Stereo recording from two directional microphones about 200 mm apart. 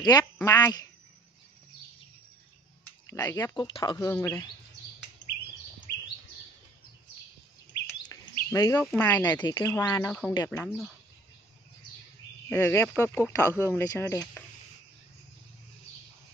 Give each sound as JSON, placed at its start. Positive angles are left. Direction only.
{"t": 0.0, "sound": "speech", "side_deg": 15}
{"t": 2.8, "sound": "speech", "side_deg": 10}
{"t": 8.0, "sound": "bird", "side_deg": 15}
{"t": 8.9, "sound": "speech", "side_deg": 10}
{"t": 9.3, "sound": "speech", "side_deg": 20}
{"t": 12.4, "sound": "speech", "side_deg": 10}